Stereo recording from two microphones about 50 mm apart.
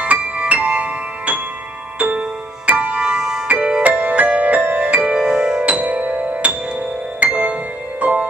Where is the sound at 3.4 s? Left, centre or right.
Right.